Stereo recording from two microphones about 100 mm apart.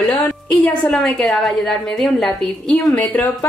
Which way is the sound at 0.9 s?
Centre (ahead or behind).